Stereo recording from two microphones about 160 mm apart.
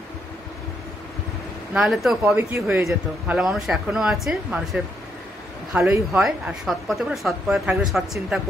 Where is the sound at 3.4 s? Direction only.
5° right (ahead or behind).